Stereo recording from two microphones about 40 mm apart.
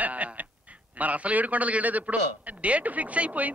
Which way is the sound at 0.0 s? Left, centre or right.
Right.